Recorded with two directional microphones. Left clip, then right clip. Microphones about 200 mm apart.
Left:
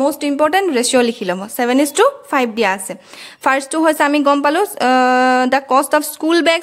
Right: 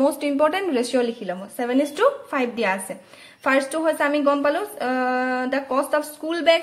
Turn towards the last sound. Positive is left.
turn(degrees=50)  # may be behind; listen again after turning